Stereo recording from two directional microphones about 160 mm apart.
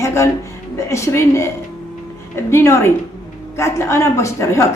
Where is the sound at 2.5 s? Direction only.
15° left (ahead or behind).